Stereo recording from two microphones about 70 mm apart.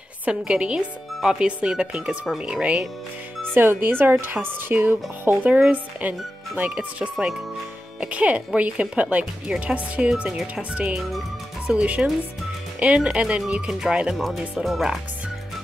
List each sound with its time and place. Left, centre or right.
0.2 s speech: centre
3.5 s speech: right
5.5 s speech: centre